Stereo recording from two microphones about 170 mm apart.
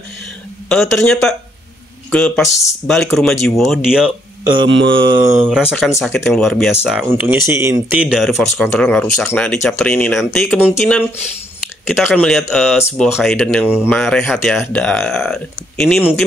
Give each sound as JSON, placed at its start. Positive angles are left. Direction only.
{"t": 0.7, "sound": "speech", "side_deg": 5}
{"t": 4.6, "sound": "mantra", "side_deg": -90}
{"t": 5.0, "sound": "speech", "side_deg": -25}
{"t": 5.5, "sound": "speech", "side_deg": -5}
{"t": 11.9, "sound": "speech", "side_deg": 0}